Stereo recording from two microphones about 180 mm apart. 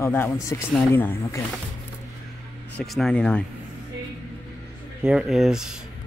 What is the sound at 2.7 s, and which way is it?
Speech, centre (ahead or behind).